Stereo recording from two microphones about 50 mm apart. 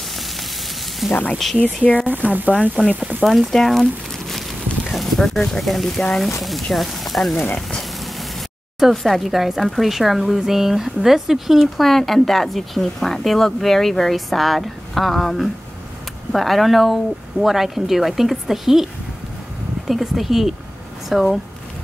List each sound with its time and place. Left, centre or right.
1.0 s speech: centre
1.8 s speech: left
2.3 s speech: right
3.3 s speech: centre
8.0 s a sound: centre
8.9 s speech: centre
19.9 s speech: centre